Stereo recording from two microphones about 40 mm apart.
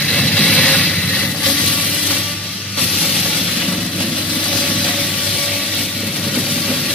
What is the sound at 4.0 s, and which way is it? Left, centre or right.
Vehicle, left.